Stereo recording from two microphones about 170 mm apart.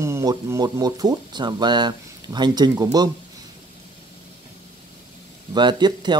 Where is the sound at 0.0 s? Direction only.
20° right (ahead or behind).